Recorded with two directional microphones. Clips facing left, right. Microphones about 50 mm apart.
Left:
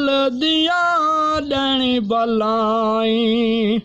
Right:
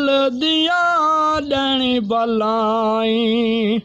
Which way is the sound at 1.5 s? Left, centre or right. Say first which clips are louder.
Right 1 dB; centre.